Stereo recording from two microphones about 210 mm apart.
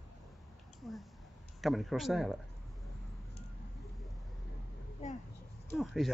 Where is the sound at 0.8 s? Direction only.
Centre (ahead or behind).